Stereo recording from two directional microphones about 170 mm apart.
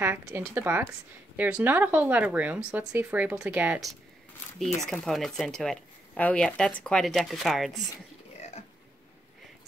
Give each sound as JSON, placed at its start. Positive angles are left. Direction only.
{"t": 0.0, "sound": "speech", "side_deg": -15}
{"t": 8.4, "sound": "burping", "side_deg": 40}